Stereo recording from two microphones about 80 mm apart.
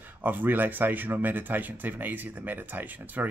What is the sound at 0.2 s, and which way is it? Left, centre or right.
A man's voice, right.